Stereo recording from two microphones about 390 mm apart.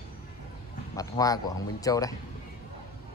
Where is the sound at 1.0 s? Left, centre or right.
Centre.